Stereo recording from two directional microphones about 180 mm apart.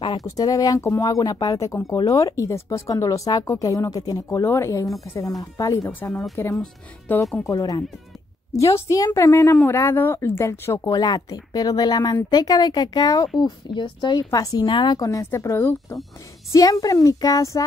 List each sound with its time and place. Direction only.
0.0 s speech: 25° left (ahead or behind)
8.8 s speech: 20° left (ahead or behind)